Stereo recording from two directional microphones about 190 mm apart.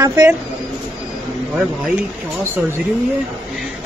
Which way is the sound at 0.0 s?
15° right (ahead or behind).